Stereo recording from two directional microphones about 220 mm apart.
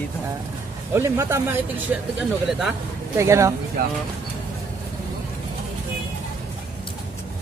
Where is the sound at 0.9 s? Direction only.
10° right (ahead or behind).